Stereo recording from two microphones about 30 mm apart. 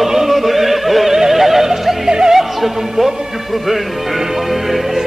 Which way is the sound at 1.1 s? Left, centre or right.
Centre.